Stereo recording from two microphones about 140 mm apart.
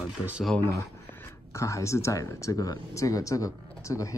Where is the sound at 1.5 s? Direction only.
20° left (ahead or behind).